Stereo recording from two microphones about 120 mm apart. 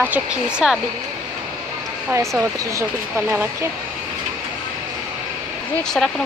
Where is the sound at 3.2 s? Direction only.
15° right (ahead or behind).